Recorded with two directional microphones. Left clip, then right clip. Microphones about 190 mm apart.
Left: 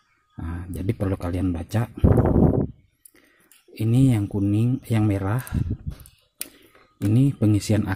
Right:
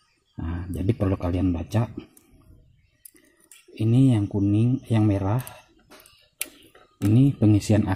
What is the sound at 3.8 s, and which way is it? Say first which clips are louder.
Speech: even; 25° left (ahead or behind).